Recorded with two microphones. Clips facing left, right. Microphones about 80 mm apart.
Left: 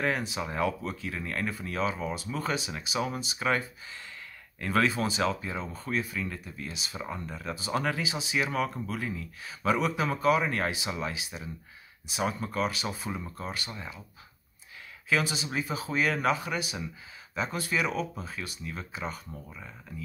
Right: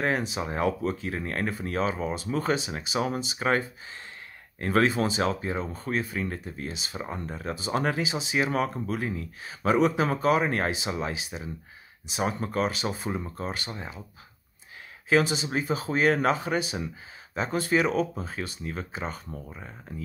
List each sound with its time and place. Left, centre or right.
0.0 s speech: right
5.2 s speech: right
6.7 s speech: right
9.4 s speech: right
15.0 s speech: right